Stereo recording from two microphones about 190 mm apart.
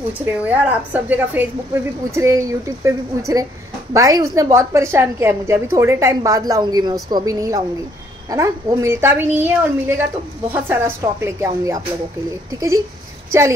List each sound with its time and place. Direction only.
0.2 s a woman's voice: 10° right (ahead or behind)